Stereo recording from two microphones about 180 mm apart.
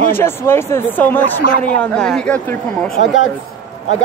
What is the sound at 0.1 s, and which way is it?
Speech, 15° left (ahead or behind).